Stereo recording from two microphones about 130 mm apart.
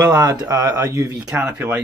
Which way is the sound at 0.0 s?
25° right (ahead or behind).